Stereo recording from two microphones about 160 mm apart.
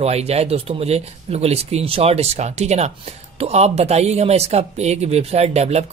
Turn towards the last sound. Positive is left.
turn(degrees=-40)  # may be behind; listen again after turning